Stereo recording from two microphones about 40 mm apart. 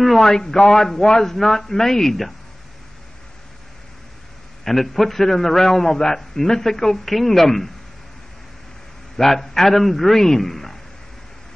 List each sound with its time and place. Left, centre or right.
0.0 s a man's voice: centre
0.3 s a man's voice: centre
4.6 s a man's voice: centre
9.1 s a man's voice: centre